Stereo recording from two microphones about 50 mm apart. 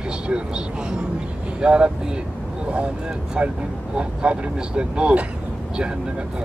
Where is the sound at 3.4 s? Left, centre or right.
Centre.